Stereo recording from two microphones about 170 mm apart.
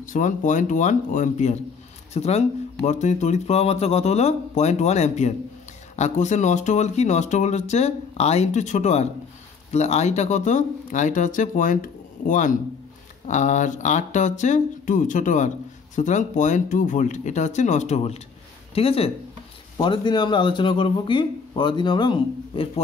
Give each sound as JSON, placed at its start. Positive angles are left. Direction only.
{"t": 0.0, "sound": "speech", "side_deg": 50}